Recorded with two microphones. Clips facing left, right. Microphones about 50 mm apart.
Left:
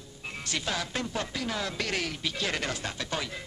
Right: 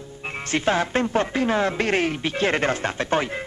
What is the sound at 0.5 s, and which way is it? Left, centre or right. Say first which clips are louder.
Speech: right 11 dB; right.